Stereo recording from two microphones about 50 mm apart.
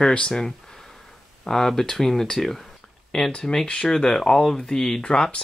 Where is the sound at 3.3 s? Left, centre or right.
Centre.